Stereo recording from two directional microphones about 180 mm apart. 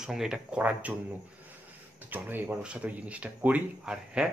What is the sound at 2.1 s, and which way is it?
Speech, 10° right (ahead or behind).